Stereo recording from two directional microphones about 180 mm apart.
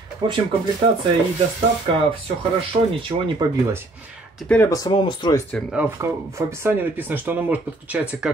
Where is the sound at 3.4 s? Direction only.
20° right (ahead or behind).